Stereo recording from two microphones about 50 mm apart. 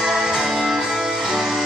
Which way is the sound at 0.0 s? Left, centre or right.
Centre.